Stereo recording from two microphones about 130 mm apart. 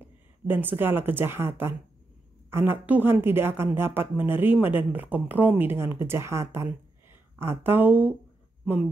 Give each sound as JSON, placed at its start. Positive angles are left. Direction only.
{"t": 0.5, "sound": "a woman's voice", "side_deg": -15}